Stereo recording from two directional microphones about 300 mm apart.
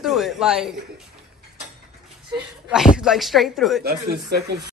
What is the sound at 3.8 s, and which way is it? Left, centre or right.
Speech, right.